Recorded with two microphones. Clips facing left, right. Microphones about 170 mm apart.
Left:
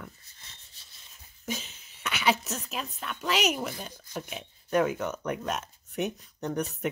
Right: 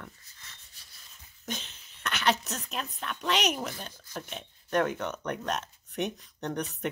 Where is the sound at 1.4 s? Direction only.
5° left (ahead or behind).